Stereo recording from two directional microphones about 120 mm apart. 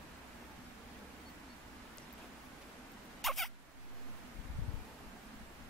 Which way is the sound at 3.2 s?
Centre (ahead or behind).